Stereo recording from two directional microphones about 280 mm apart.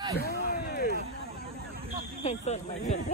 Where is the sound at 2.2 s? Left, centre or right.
Left.